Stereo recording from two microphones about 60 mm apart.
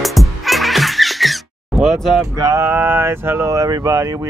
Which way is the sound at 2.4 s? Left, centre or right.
Right.